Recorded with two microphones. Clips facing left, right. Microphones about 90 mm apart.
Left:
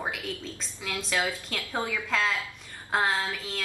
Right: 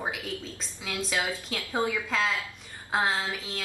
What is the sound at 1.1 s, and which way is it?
Speech, 15° right (ahead or behind).